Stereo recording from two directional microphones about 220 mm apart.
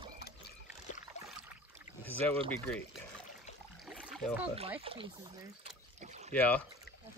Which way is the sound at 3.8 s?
5° right (ahead or behind).